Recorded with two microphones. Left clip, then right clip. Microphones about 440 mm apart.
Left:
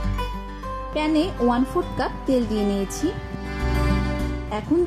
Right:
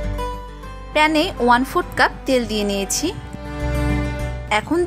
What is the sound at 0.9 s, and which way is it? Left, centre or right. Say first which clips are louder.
Speech: right 7 dB; centre.